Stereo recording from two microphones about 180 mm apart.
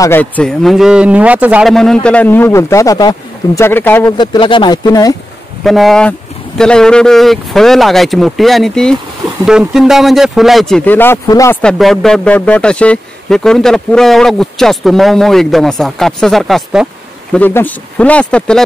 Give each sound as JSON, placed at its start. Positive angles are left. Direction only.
{"t": 0.0, "sound": "speech", "side_deg": 10}
{"t": 4.2, "sound": "speech", "side_deg": 25}
{"t": 5.6, "sound": "speech", "side_deg": 0}
{"t": 11.6, "sound": "speech", "side_deg": 0}